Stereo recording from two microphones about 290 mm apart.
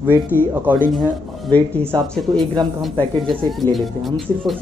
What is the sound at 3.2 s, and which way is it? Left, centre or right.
Speech, centre.